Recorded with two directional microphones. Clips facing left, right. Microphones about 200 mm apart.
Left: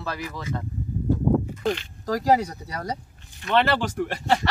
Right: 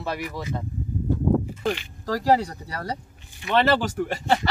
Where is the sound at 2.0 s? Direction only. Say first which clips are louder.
Even; 15° left (ahead or behind).